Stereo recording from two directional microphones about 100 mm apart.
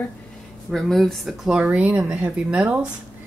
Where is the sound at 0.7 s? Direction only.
Centre (ahead or behind).